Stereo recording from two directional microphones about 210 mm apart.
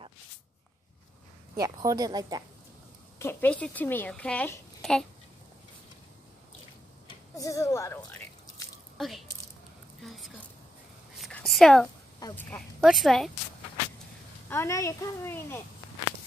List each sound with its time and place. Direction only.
1.6 s speech: 15° right (ahead or behind)
3.2 s a child's voice: 10° left (ahead or behind)
7.3 s speech: 15° left (ahead or behind)
8.9 s speech: centre (ahead or behind)
11.1 s whispering: centre (ahead or behind)
12.4 s speech: 5° left (ahead or behind)
14.5 s a child's voice: 15° left (ahead or behind)